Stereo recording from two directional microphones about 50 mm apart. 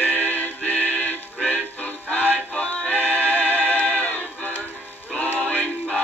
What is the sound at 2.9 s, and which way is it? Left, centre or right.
Music, left.